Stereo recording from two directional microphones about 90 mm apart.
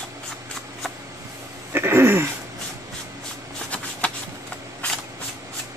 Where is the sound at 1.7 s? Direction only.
25° right (ahead or behind).